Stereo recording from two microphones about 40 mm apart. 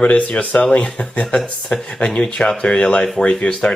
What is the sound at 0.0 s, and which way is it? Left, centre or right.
Speech, left.